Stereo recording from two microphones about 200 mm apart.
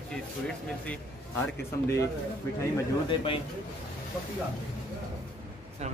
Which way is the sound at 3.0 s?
25° left (ahead or behind).